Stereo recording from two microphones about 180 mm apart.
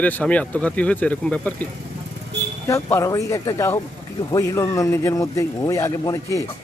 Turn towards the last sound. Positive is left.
turn(degrees=20)  # may be behind; listen again after turning